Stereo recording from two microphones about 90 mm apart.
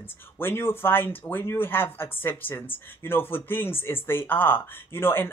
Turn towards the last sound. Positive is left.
turn(degrees=25)  # may be behind; listen again after turning